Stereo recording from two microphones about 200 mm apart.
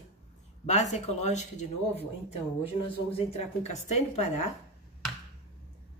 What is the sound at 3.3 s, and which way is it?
Speech, 35° left (ahead or behind).